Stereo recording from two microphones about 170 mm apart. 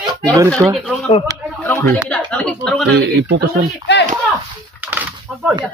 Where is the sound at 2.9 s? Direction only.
90° right.